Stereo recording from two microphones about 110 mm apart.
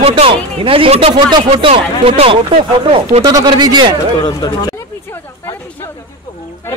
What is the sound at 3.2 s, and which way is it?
Speech, 35° right (ahead or behind).